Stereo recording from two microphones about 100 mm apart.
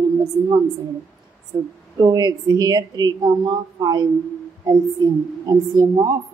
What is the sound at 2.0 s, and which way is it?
A woman's voice, 45° right (ahead or behind).